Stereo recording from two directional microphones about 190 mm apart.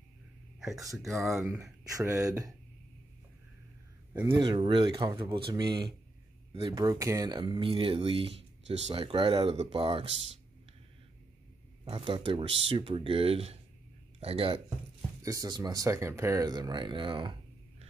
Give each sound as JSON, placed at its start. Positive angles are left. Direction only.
{"t": 1.3, "sound": "speech", "side_deg": -10}
{"t": 4.1, "sound": "speech", "side_deg": -25}
{"t": 11.8, "sound": "speech", "side_deg": -25}
{"t": 15.2, "sound": "speech", "side_deg": -20}